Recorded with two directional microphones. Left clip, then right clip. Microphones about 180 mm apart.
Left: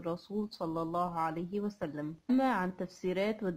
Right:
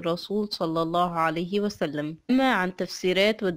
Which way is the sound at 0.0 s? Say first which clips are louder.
Right 10 dB; 25° right (ahead or behind).